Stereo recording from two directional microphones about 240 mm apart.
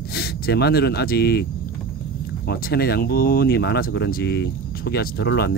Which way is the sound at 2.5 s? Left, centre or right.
Left.